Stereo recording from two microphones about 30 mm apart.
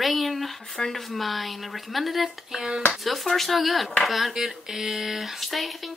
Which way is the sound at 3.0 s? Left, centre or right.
Centre.